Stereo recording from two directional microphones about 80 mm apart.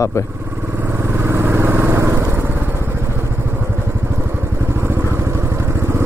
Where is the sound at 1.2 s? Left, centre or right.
Right.